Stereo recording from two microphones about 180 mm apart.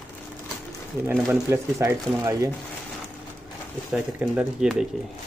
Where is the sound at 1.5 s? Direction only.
15° right (ahead or behind).